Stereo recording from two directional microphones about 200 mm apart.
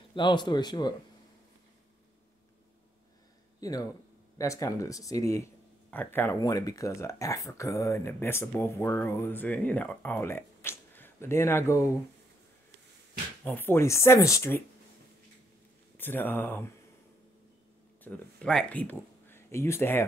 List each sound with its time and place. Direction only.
0.1 s speech: 25° left (ahead or behind)
3.6 s speech: 20° left (ahead or behind)
13.4 s speech: 10° left (ahead or behind)
16.0 s speech: 10° left (ahead or behind)
18.0 s speech: 5° left (ahead or behind)